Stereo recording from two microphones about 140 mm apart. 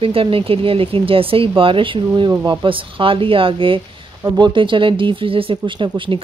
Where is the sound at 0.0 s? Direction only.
40° right (ahead or behind).